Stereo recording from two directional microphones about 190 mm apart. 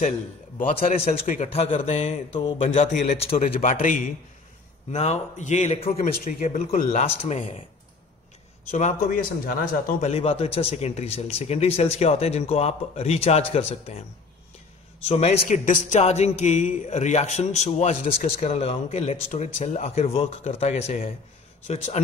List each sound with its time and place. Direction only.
0.7 s a man's voice: 30° left (ahead or behind)
3.7 s a man's voice: 45° left (ahead or behind)
8.7 s a man's voice: 40° left (ahead or behind)
10.0 s a man's voice: 30° left (ahead or behind)
15.0 s a man's voice: 35° left (ahead or behind)